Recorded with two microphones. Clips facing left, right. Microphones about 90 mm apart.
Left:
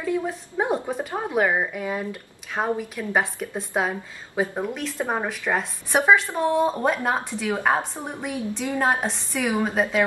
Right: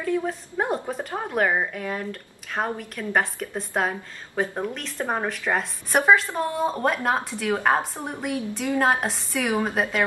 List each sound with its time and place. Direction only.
0.0 s a woman's voice: 5° left (ahead or behind)